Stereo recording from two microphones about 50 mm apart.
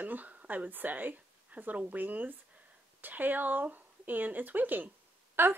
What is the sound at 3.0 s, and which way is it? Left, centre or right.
Speech, right.